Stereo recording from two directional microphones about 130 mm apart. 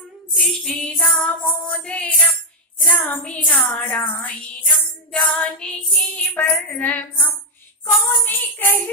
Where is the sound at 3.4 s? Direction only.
15° left (ahead or behind).